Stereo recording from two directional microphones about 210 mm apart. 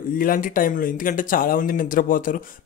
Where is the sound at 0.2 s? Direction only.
40° left (ahead or behind).